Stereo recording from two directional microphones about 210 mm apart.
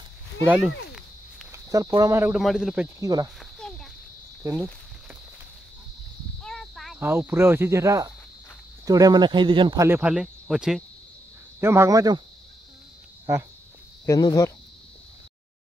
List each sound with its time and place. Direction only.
0.5 s speech: 5° right (ahead or behind)
1.5 s speech: 15° right (ahead or behind)
3.0 s speech: 15° right (ahead or behind)
3.3 s a sound: centre (ahead or behind)
4.4 s speech: 15° right (ahead or behind)
6.4 s a sound: centre (ahead or behind)
7.0 s speech: 10° right (ahead or behind)
11.6 s speech: 10° right (ahead or behind)
14.0 s speech: 15° left (ahead or behind)